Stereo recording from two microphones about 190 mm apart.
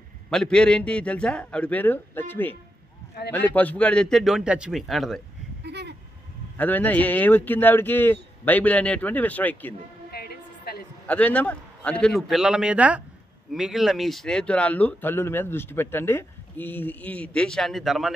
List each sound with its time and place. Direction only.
0.3 s a man's voice: 5° left (ahead or behind)
5.7 s vehicle: 65° right (ahead or behind)
6.5 s speech: 10° left (ahead or behind)
10.1 s music: 55° left (ahead or behind)
11.1 s a man's voice: 5° left (ahead or behind)